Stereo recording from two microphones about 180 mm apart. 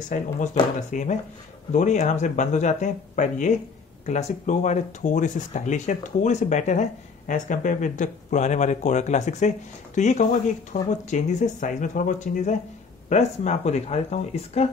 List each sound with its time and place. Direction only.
0.1 s speech: 45° left (ahead or behind)